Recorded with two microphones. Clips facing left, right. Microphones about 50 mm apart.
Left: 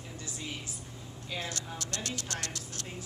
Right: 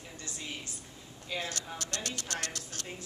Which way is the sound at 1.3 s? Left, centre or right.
Centre.